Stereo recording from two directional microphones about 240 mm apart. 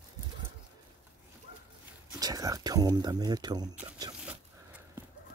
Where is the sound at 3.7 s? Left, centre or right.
Centre.